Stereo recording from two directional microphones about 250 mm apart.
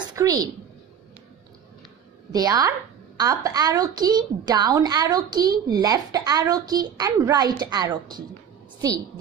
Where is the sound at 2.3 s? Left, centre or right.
Centre.